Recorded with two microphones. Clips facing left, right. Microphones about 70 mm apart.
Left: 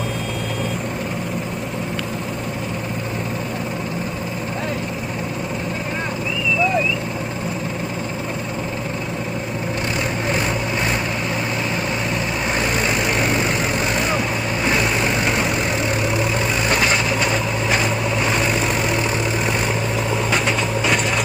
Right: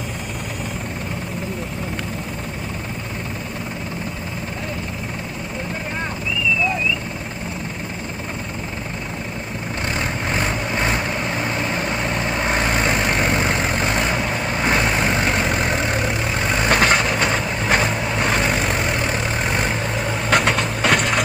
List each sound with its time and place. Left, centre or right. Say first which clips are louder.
10.3 s vehicle: left 1 dB; right
12.4 s vehicle: right 1 dB; right
20.2 s vehicle: right 2 dB; right